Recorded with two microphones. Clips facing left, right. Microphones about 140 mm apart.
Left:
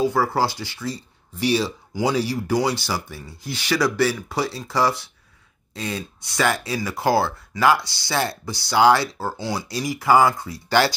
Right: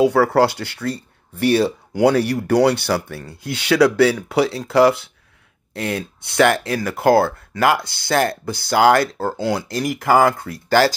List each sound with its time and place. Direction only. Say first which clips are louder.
0.0 s speech: right 6 dB; 70° right (ahead or behind)